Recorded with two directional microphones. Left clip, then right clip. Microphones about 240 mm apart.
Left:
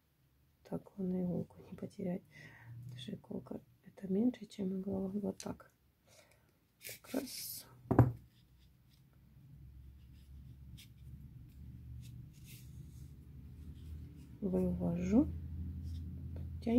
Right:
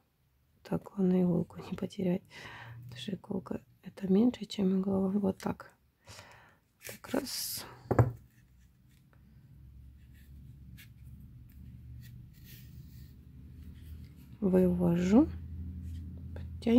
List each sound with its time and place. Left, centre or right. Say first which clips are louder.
0.6 s speech: right 9 dB; right
14.5 s speech: right 10 dB; right